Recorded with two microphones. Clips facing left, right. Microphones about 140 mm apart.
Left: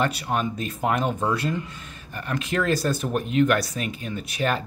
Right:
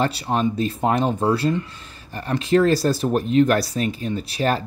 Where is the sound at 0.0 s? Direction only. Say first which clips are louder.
Right 3 dB; 30° right (ahead or behind).